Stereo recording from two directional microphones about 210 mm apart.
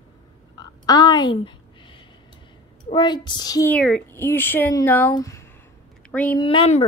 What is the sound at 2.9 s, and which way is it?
Speech, 20° left (ahead or behind).